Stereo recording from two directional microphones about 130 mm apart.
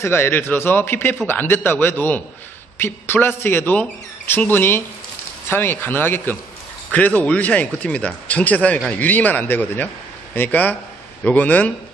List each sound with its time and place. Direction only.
0.0 s a man's voice: 20° left (ahead or behind)